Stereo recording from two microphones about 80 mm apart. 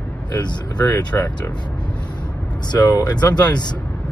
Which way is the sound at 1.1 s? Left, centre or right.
Left.